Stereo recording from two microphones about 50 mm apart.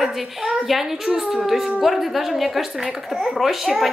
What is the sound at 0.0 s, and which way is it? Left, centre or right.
Speech, centre.